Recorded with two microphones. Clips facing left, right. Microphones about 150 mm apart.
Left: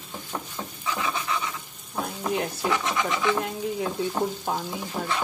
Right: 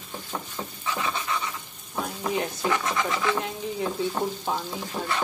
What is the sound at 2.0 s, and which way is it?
Frying, centre (ahead or behind).